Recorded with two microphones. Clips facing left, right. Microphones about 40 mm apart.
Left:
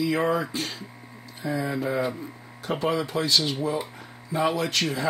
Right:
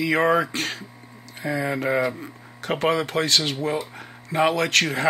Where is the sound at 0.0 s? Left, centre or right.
Right.